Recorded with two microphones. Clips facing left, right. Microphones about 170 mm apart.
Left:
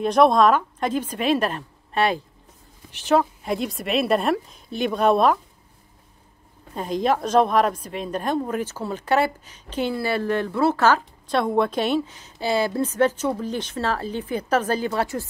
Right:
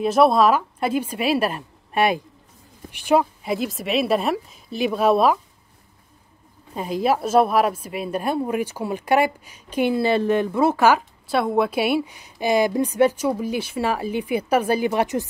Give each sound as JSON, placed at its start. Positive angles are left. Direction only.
{"t": 0.0, "sound": "a woman's voice", "side_deg": -5}
{"t": 6.7, "sound": "a woman's voice", "side_deg": -5}